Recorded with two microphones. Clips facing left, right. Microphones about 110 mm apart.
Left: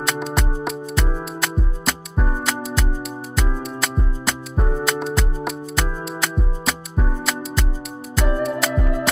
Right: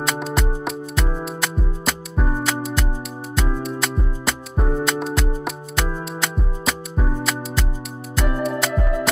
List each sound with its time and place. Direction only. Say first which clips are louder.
0.0 s music: even; centre (ahead or behind)